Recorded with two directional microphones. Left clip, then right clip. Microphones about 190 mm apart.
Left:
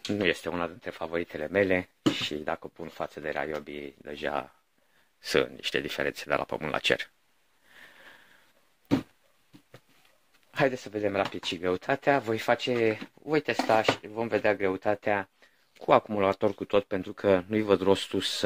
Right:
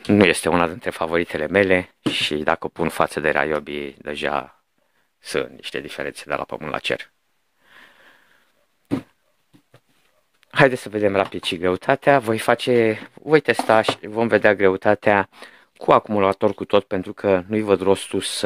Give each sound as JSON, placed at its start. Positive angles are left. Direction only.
{"t": 0.0, "sound": "speech", "side_deg": -65}
{"t": 5.2, "sound": "speech", "side_deg": -10}
{"t": 7.7, "sound": "a sound", "side_deg": -15}
{"t": 10.5, "sound": "speech", "side_deg": -70}
{"t": 15.8, "sound": "speech", "side_deg": -35}